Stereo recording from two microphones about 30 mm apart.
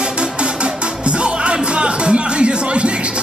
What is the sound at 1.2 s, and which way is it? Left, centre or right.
Music, right.